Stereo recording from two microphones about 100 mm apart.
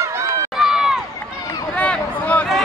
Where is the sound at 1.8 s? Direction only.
15° left (ahead or behind).